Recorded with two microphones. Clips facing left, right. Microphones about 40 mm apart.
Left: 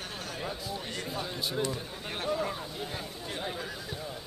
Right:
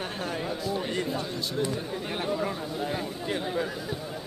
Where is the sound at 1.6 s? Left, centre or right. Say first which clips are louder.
Right 6 dB; centre.